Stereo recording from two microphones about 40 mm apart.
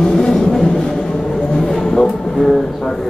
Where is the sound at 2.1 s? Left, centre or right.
Centre.